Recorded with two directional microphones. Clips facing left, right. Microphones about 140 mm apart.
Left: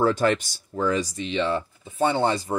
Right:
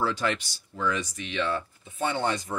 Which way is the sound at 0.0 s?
45° left (ahead or behind).